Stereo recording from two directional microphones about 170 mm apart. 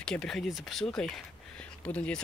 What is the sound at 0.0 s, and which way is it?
Speech, 5° left (ahead or behind).